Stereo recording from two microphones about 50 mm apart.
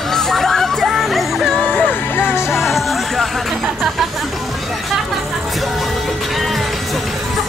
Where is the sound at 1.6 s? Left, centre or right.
Left.